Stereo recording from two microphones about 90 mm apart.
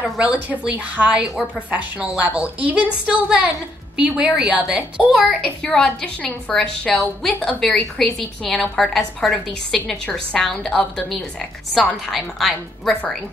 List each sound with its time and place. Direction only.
0.2 s a woman's voice: 15° right (ahead or behind)
5.4 s a woman's voice: 10° left (ahead or behind)